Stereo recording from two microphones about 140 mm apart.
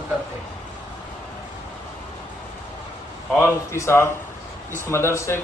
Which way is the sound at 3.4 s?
20° left (ahead or behind).